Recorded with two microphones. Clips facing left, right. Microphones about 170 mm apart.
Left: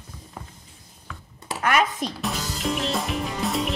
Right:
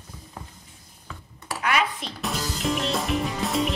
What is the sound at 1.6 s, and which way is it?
Speech, 45° left (ahead or behind).